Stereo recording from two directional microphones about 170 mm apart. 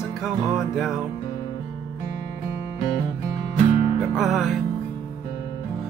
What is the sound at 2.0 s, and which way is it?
Music, 40° left (ahead or behind).